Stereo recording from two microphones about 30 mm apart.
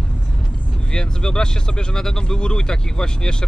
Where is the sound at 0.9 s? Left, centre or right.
Left.